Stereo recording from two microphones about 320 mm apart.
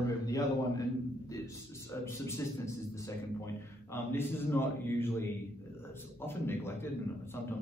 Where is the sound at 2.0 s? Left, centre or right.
Centre.